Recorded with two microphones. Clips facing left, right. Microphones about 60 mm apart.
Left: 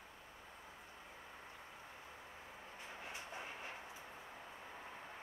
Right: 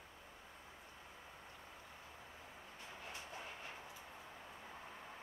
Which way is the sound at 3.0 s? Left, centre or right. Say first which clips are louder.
Left 1 dB; left.